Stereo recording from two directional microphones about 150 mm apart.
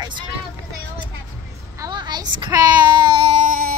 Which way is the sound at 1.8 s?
30° right (ahead or behind).